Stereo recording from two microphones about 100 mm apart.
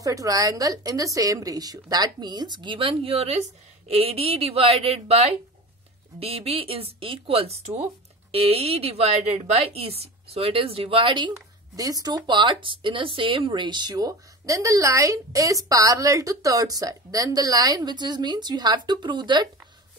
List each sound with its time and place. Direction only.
0.0 s a woman's voice: 35° right (ahead or behind); by 5.3 s 90° right
6.1 s speech: 75° right (ahead or behind)
8.3 s speech: 80° right; by 11.3 s 55° right (ahead or behind)
11.7 s speech: 40° right (ahead or behind)